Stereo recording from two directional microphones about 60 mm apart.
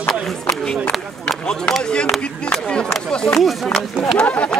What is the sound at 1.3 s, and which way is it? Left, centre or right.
Run, centre.